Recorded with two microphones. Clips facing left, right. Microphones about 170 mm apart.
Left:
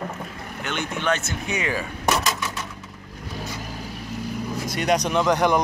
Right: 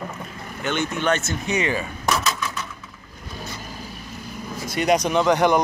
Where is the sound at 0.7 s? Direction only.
Centre (ahead or behind).